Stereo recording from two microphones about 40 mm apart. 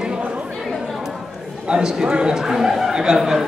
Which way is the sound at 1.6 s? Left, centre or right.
Centre.